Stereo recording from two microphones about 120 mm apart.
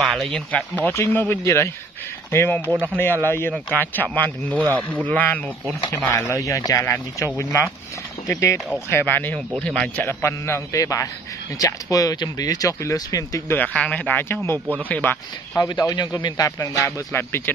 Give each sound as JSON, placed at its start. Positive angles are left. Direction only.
{"t": 0.0, "sound": "speech", "side_deg": 0}
{"t": 0.5, "sound": "speech", "side_deg": 10}
{"t": 2.6, "sound": "speech", "side_deg": -15}
{"t": 3.3, "sound": "speech", "side_deg": 20}
{"t": 6.1, "sound": "speech", "side_deg": 25}
{"t": 13.5, "sound": "speech", "side_deg": 10}
{"t": 15.5, "sound": "speech", "side_deg": 30}